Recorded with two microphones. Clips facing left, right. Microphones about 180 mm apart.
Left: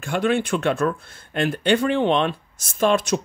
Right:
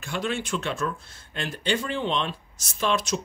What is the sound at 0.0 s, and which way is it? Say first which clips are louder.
Speech: left 8 dB; 55° left (ahead or behind).